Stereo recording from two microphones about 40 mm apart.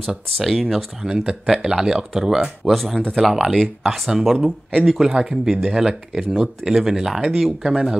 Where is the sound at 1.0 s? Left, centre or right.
Right.